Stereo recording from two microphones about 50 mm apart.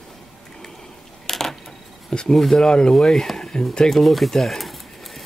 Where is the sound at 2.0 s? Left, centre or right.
Centre.